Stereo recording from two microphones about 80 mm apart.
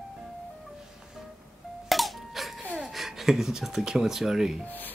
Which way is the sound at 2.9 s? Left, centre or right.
Centre.